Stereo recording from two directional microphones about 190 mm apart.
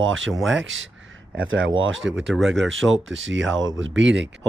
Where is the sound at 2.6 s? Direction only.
90° right; by 4.3 s 75° right (ahead or behind).